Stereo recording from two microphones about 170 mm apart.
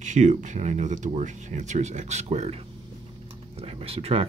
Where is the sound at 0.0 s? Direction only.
45° right (ahead or behind).